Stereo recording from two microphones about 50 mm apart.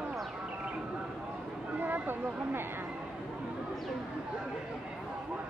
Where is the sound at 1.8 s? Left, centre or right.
Right.